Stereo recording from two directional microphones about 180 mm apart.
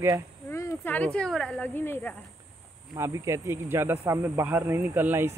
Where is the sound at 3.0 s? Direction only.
15° right (ahead or behind).